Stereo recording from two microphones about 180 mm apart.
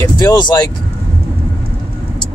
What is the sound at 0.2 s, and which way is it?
Speech, 20° left (ahead or behind).